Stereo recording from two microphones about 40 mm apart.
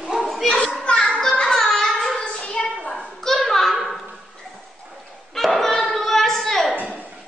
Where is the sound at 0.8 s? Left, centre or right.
Left.